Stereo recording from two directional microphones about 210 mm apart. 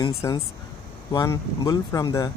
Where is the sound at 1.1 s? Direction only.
20° left (ahead or behind).